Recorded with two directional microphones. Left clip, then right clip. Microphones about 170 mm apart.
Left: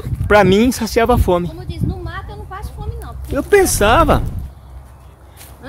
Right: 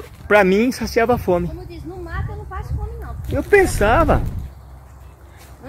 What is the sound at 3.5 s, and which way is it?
Speech, 15° left (ahead or behind).